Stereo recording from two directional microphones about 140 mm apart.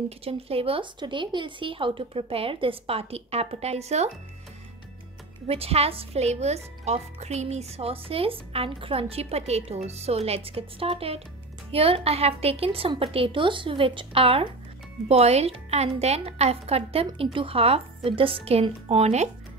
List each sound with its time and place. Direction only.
0.2 s speech: 45° right (ahead or behind)
5.5 s speech: 45° right (ahead or behind)